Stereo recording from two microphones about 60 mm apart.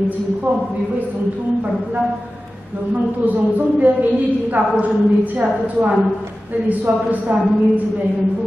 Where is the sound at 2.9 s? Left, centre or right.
Right.